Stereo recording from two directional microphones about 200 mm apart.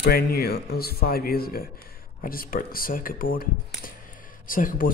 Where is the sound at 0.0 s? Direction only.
50° left (ahead or behind).